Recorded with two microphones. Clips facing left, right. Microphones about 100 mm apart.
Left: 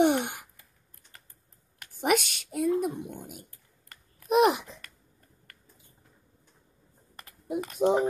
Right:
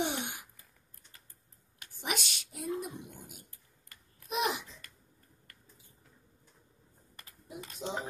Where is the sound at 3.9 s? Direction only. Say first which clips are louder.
Left 13 dB; 55° left (ahead or behind).